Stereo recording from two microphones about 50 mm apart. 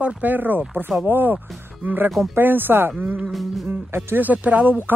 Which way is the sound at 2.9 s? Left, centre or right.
Right.